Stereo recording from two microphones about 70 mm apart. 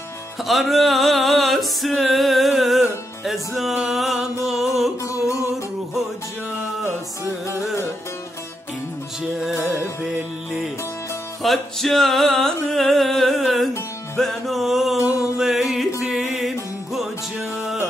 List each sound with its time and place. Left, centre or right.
0.4 s music: centre
5.0 s music: left
9.3 s music: centre
11.4 s music: centre